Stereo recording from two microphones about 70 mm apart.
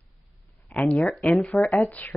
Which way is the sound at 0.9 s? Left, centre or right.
Centre.